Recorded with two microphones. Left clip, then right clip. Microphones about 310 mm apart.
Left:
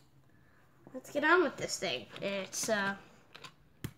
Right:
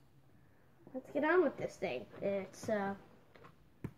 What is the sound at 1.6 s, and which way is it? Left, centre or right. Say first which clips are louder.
Speech: left 3 dB; left.